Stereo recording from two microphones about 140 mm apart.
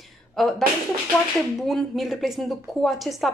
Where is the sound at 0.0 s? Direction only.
Centre (ahead or behind).